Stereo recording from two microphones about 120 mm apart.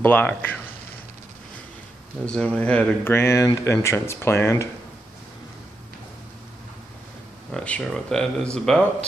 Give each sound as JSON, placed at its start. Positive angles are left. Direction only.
{"t": 0.0, "sound": "speech", "side_deg": 15}
{"t": 2.2, "sound": "speech", "side_deg": 5}
{"t": 7.5, "sound": "speech", "side_deg": 10}